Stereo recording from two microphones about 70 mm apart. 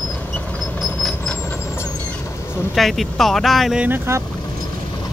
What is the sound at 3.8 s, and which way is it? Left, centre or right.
Speech, right.